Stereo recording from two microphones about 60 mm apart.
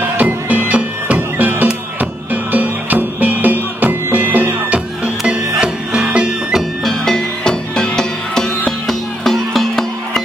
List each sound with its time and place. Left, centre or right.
0.5 s music: right
4.7 s music: centre
6.5 s music: centre